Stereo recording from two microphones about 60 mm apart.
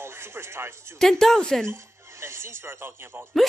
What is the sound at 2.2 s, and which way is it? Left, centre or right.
Speech, right.